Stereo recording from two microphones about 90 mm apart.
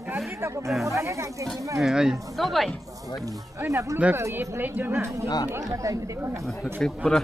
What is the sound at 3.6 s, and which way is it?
A woman's voice, 35° right (ahead or behind).